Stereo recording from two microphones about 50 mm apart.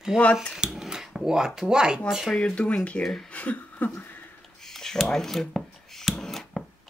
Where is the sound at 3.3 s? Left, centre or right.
Left.